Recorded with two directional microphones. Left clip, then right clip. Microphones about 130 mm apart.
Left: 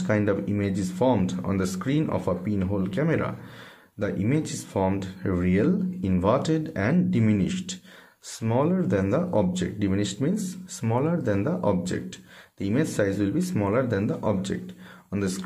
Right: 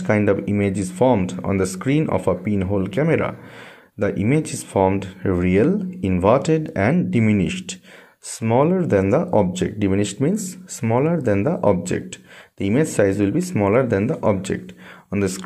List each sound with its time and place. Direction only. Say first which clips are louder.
0.0 s speech: right 6 dB; 30° right (ahead or behind)